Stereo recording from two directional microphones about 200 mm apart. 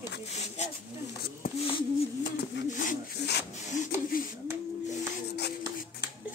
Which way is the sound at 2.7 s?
40° left (ahead or behind).